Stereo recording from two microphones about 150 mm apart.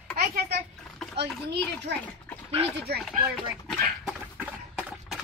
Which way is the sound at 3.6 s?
Centre (ahead or behind).